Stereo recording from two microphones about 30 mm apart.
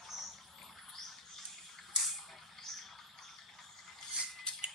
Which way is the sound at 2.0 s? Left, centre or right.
Centre.